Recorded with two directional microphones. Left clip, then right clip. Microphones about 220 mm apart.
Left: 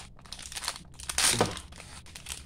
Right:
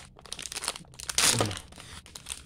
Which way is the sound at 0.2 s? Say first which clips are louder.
Right 4 dB; 35° right (ahead or behind).